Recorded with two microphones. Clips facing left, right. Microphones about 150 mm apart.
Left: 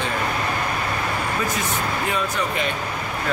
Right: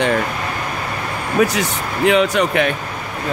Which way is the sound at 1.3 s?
85° right.